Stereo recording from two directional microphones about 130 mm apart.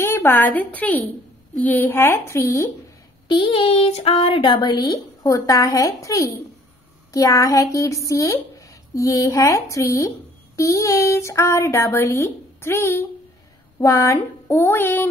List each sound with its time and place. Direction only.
0.0 s a woman's voice: 15° left (ahead or behind)
3.3 s speech: 40° left (ahead or behind); by 15.0 s 15° left (ahead or behind)